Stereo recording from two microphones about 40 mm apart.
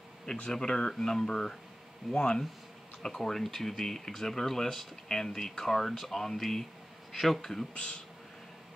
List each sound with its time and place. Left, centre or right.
0.5 s speech: centre
7.7 s speech: left